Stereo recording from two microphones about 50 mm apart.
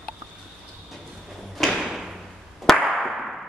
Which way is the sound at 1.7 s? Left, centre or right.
Centre.